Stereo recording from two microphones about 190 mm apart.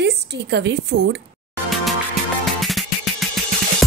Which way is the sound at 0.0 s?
65° right (ahead or behind).